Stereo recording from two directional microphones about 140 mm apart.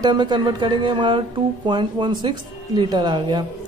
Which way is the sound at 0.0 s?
30° right (ahead or behind).